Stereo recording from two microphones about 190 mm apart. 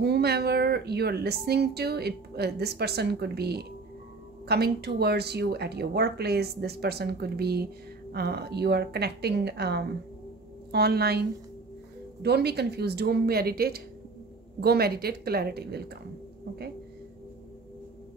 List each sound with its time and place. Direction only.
0.0 s speech: 60° right (ahead or behind)